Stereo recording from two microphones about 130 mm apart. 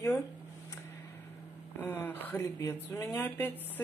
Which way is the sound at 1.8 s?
15° left (ahead or behind).